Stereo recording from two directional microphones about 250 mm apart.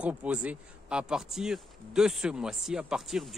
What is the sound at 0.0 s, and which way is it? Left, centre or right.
Speech, centre.